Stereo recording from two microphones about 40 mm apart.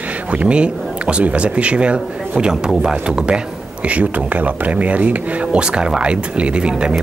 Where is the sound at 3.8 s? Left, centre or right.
Right.